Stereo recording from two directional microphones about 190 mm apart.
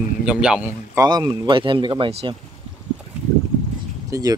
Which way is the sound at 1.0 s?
20° right (ahead or behind).